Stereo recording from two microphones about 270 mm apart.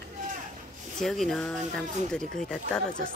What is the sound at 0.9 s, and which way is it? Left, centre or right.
Speech, centre.